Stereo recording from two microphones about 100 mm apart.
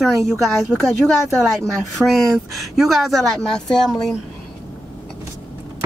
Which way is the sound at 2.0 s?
Centre (ahead or behind).